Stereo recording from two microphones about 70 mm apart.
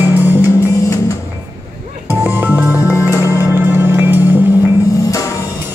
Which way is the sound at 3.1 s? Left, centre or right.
Left.